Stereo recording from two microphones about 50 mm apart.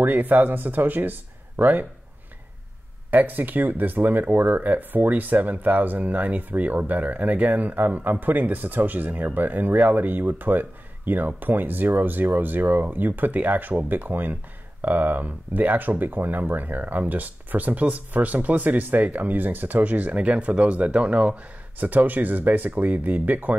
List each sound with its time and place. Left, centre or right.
0.0 s speech: right
3.1 s speech: right